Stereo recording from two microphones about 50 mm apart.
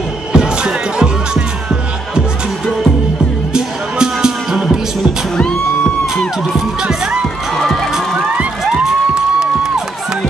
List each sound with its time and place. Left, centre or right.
0.3 s music: centre
3.5 s music: centre
7.5 s run: centre
8.6 s music: centre